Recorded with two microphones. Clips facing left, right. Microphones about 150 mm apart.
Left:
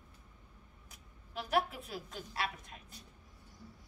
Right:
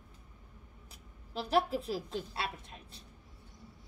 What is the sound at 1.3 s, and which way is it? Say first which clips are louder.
A woman's voice: right 4 dB; 30° right (ahead or behind).